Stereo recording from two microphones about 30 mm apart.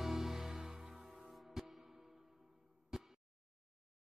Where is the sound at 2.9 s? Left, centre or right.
Centre.